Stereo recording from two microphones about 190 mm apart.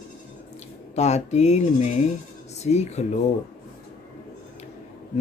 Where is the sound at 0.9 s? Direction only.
35° left (ahead or behind).